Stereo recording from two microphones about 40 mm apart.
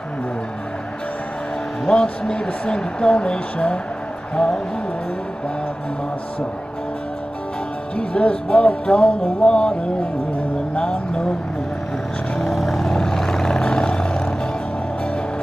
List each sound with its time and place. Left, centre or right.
1.9 s speech: left
7.9 s speech: left
10.8 s speech: left
12.5 s vehicle: centre
12.9 s vehicle: centre